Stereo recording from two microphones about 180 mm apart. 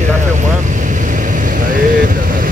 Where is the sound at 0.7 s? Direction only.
45° right (ahead or behind).